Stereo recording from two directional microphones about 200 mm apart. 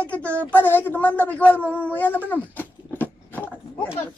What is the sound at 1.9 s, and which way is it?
Dog, 10° left (ahead or behind).